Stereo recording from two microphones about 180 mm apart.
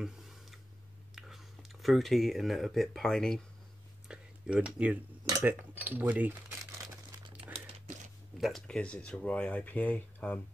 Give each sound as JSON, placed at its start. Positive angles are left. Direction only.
{"t": 0.0, "sound": "tick-tock", "side_deg": 0}
{"t": 1.1, "sound": "speech", "side_deg": 0}
{"t": 4.1, "sound": "tick-tock", "side_deg": -5}
{"t": 5.4, "sound": "speech", "side_deg": -10}
{"t": 7.5, "sound": "crumpling", "side_deg": -35}
{"t": 8.4, "sound": "speech", "side_deg": 0}